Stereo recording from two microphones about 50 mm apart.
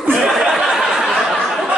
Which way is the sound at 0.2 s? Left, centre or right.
Centre.